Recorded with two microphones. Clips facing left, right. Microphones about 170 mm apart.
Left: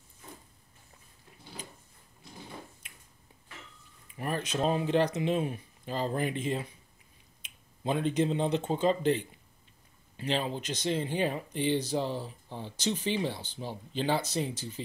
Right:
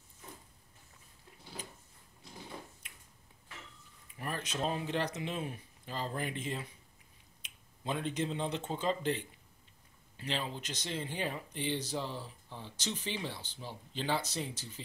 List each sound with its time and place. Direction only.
4.2 s speech: 20° left (ahead or behind)
7.8 s speech: 20° left (ahead or behind)